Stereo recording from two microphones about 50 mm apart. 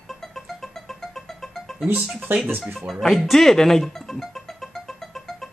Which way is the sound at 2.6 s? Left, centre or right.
Centre.